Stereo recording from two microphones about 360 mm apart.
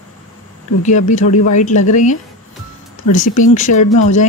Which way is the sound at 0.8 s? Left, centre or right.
Centre.